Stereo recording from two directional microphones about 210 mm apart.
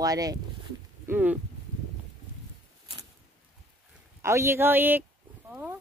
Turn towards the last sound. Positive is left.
turn(degrees=-10)  # may be behind; listen again after turning